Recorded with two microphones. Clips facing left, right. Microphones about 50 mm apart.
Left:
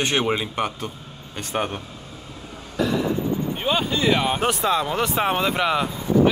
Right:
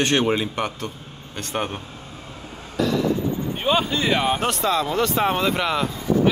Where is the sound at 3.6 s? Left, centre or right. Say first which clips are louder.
Right 3 dB; centre.